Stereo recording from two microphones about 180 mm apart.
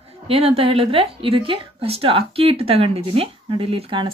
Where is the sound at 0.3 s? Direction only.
30° right (ahead or behind).